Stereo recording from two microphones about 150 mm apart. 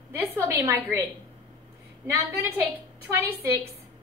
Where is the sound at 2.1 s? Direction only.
15° right (ahead or behind).